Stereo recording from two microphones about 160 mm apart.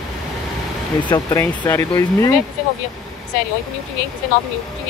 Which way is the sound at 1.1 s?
20° left (ahead or behind).